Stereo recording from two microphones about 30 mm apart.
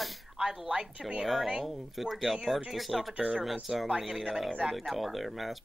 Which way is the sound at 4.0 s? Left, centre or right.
Centre.